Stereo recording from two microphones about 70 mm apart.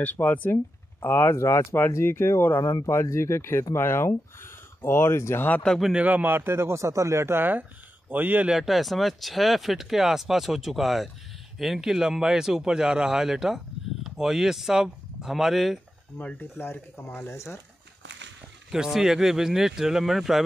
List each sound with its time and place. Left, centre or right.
0.0 s speech: left
5.9 s speech: right
8.5 s speech: centre
16.2 s speech: left
17.3 s speech: left
18.7 s speech: centre